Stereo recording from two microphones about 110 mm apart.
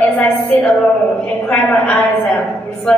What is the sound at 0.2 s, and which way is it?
A man's voice, 10° left (ahead or behind).